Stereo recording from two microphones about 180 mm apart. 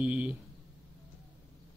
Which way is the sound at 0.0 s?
5° right (ahead or behind).